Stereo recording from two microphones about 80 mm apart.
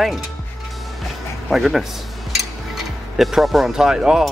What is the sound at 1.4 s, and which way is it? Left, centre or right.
Speech, centre.